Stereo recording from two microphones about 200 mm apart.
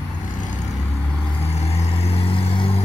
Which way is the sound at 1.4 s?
30° left (ahead or behind).